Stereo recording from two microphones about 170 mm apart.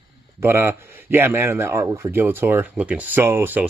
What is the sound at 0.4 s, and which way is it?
A man's voice, 15° right (ahead or behind).